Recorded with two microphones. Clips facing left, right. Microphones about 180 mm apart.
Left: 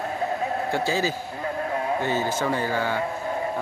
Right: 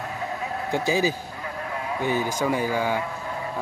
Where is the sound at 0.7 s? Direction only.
15° right (ahead or behind).